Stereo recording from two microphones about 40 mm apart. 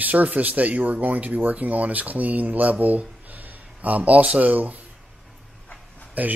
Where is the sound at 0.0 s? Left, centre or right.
Right.